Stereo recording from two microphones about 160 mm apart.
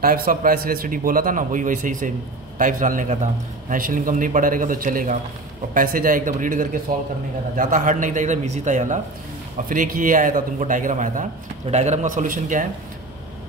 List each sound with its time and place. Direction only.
0.0 s a man's voice: 65° right (ahead or behind)